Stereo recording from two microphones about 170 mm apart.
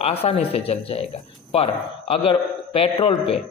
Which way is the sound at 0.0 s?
35° left (ahead or behind).